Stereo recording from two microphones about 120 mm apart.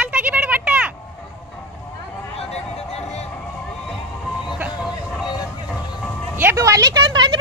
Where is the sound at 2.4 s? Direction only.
60° left (ahead or behind).